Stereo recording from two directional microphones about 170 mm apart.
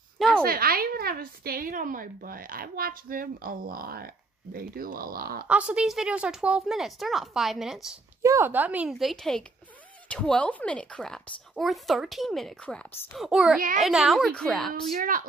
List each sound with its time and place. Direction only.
0.4 s a woman's voice: 60° right (ahead or behind)
5.5 s speech: 5° right (ahead or behind)
8.2 s speech: 15° right (ahead or behind); by 14.7 s 5° left (ahead or behind)
14.7 s a woman's voice: 55° right (ahead or behind)